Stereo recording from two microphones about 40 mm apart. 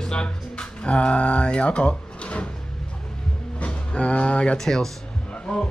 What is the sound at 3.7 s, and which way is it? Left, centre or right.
Speech, left.